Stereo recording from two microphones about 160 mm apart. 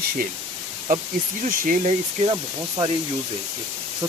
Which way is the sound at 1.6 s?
55° right (ahead or behind).